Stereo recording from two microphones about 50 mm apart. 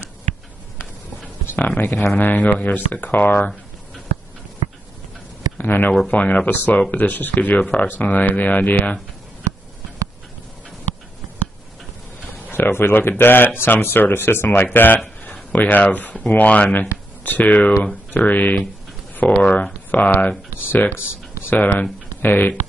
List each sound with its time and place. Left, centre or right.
1.8 s speech: left
5.6 s speech: left
6.0 s speech: left
12.5 s speech: left
14.5 s speech: left
15.2 s speech: left
19.1 s a sound: left
20.7 s speech: left